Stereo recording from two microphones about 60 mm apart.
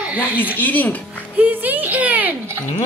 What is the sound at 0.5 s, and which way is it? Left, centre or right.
Speech, left.